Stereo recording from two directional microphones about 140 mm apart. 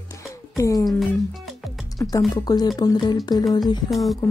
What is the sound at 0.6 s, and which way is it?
Speech, 25° left (ahead or behind).